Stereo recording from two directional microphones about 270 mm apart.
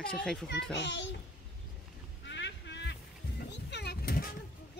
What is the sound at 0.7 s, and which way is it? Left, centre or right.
Speech, left.